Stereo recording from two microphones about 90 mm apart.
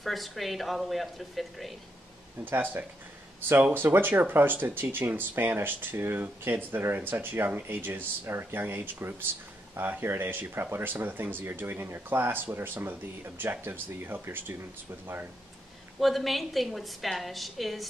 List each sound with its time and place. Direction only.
0.0 s a woman's voice: centre (ahead or behind)
2.4 s speech: 20° right (ahead or behind)
16.0 s a woman's voice: centre (ahead or behind)